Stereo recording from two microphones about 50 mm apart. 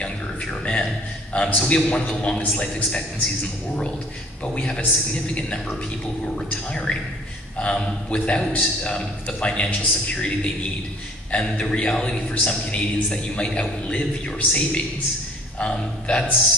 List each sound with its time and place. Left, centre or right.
0.0 s a sound: left
1.3 s a man's voice: left
4.6 s a man's voice: left